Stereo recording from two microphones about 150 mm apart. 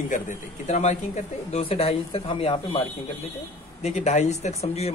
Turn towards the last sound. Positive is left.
turn(degrees=45)  # may be behind; listen again after turning